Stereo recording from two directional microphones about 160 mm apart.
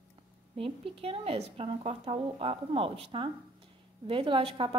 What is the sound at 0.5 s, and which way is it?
Speech, 35° right (ahead or behind).